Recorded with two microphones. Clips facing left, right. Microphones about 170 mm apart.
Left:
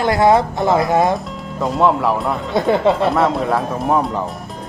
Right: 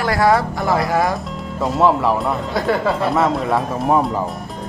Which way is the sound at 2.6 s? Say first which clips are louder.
Left 4 dB; 25° left (ahead or behind).